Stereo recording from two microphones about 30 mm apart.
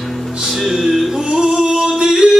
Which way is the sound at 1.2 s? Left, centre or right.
Centre.